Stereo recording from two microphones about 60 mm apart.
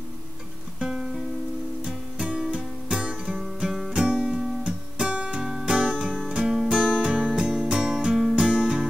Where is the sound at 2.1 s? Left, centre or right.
Centre.